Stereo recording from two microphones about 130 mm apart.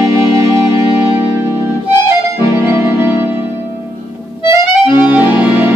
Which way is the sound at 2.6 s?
20° right (ahead or behind).